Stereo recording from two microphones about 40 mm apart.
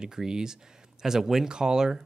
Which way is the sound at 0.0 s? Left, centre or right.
Centre.